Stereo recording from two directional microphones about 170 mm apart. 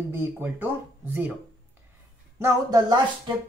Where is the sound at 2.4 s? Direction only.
25° right (ahead or behind).